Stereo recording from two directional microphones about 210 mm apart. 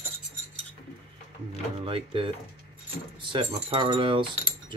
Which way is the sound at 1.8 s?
25° right (ahead or behind).